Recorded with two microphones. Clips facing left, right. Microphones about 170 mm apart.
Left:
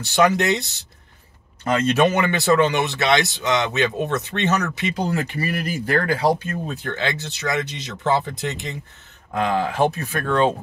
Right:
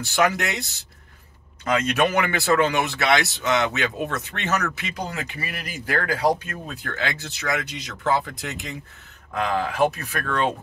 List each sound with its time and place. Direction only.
0.0 s speech: 20° left (ahead or behind)
5.1 s speech: 35° left (ahead or behind)